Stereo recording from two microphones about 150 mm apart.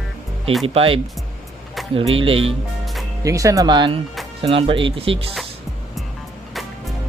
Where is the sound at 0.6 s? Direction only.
40° right (ahead or behind).